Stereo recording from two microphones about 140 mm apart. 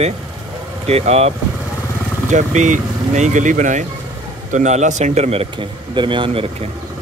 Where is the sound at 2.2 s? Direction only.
60° right (ahead or behind); by 6.7 s 40° right (ahead or behind).